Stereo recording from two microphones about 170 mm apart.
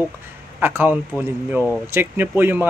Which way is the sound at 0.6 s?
10° right (ahead or behind).